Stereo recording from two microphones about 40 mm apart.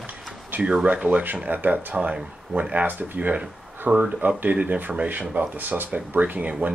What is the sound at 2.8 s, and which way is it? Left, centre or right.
Speech, right.